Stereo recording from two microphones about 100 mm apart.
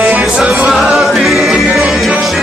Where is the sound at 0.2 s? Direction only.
5° right (ahead or behind).